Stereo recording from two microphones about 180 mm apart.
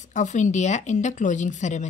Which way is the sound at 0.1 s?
45° left (ahead or behind).